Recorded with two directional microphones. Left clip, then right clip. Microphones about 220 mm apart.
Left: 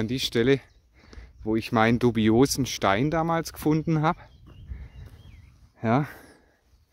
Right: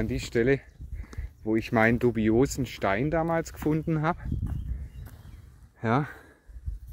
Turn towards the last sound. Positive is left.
turn(degrees=30)  # may be behind; listen again after turning